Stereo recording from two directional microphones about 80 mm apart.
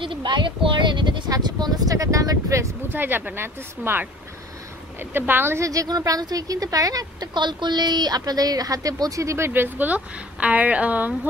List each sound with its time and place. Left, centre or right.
0.0 s speech: right
1.3 s speech: right
2.9 s a woman's voice: right
5.1 s a woman's voice: right
5.7 s a woman's voice: right
7.3 s a woman's voice: right
9.5 s a woman's voice: right